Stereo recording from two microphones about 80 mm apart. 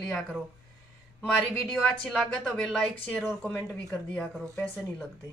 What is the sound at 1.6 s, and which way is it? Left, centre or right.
Speech, centre.